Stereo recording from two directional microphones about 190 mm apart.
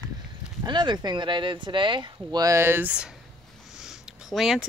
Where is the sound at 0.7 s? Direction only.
25° right (ahead or behind); by 3.2 s 5° right (ahead or behind).